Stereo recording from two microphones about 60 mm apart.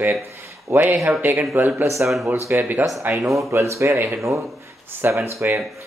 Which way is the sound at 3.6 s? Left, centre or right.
Right.